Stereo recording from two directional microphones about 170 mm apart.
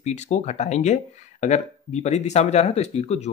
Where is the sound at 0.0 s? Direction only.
40° left (ahead or behind).